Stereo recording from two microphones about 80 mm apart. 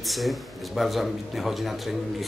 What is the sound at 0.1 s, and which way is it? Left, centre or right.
Speech, centre.